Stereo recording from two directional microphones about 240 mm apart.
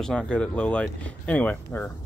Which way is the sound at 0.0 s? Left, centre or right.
Centre.